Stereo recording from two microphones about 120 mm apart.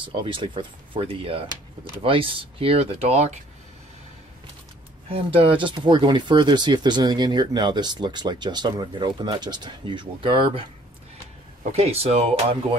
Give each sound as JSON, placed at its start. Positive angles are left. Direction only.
{"t": 0.0, "sound": "speech", "side_deg": -45}
{"t": 5.1, "sound": "speech", "side_deg": -50}
{"t": 11.7, "sound": "speech", "side_deg": -60}